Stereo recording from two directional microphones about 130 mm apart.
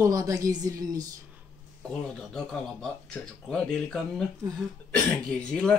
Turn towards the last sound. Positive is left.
turn(degrees=10)  # may be behind; listen again after turning